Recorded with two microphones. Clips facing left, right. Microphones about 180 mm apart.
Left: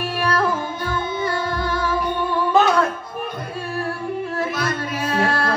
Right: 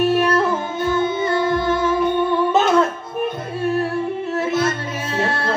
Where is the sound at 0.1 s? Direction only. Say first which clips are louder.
Right 4 dB; 25° right (ahead or behind).